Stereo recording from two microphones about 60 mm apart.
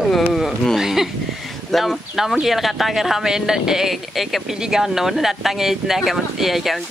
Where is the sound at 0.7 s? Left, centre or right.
Centre.